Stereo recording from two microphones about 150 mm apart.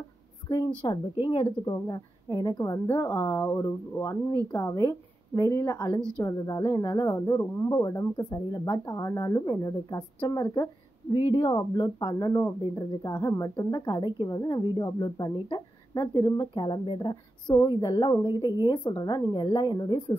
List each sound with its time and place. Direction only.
0.8 s a woman's voice: 30° left (ahead or behind)
5.9 s a woman's voice: 5° left (ahead or behind)
6.2 s speech: 25° left (ahead or behind)